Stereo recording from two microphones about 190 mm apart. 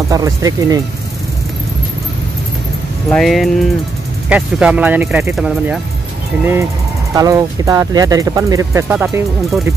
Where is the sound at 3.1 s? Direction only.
Centre (ahead or behind).